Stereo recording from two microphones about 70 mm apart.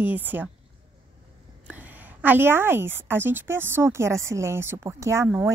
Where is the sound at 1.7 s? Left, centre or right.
Right.